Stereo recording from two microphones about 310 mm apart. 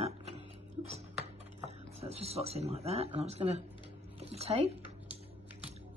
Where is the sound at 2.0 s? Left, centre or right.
Centre.